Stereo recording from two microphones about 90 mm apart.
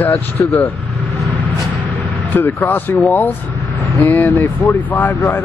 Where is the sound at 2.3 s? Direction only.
20° left (ahead or behind).